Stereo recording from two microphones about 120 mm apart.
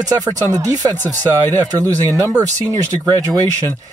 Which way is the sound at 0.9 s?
15° left (ahead or behind).